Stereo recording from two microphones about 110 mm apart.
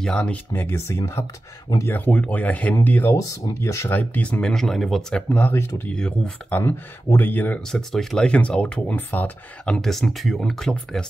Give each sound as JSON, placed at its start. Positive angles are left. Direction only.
{"t": 0.0, "sound": "speech", "side_deg": 10}
{"t": 0.5, "sound": "speech", "side_deg": 25}
{"t": 3.2, "sound": "speech", "side_deg": 30}
{"t": 3.9, "sound": "speech", "side_deg": 15}
{"t": 5.9, "sound": "speech", "side_deg": 5}
{"t": 6.6, "sound": "speech", "side_deg": 20}
{"t": 9.8, "sound": "speech", "side_deg": 0}